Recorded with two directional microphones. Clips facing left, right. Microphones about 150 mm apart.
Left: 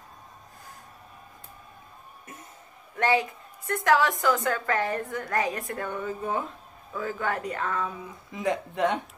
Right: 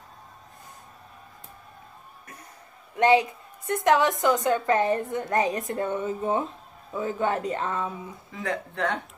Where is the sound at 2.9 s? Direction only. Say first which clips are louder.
Right 5 dB; 20° right (ahead or behind).